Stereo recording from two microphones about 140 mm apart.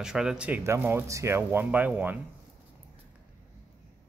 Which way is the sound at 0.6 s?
15° right (ahead or behind).